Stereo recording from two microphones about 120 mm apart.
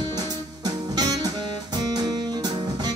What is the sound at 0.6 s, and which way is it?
Music, 35° right (ahead or behind).